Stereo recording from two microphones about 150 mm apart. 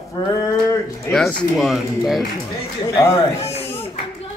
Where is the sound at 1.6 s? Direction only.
Centre (ahead or behind).